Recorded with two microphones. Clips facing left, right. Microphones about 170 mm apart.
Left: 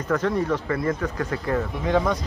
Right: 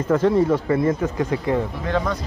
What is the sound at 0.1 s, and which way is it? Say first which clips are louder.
Speech: right 5 dB; 25° right (ahead or behind).